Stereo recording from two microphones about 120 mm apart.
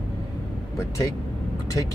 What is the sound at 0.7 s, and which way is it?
Speech, 25° left (ahead or behind).